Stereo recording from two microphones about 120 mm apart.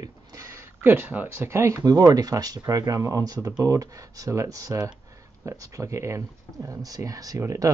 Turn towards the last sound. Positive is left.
turn(degrees=-30)  # may be behind; listen again after turning